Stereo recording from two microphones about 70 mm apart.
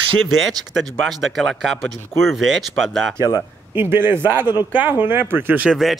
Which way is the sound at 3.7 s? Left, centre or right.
Right.